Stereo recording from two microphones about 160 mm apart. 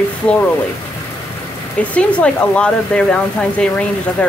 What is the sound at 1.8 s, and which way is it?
Speech, 10° left (ahead or behind).